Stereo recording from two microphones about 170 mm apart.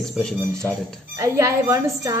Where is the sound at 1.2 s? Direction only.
20° right (ahead or behind).